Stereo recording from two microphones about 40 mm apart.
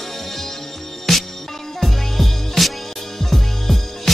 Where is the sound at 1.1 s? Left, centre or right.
Centre.